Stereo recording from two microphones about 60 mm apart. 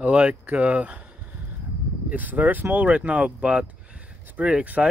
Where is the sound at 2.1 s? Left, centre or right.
Right.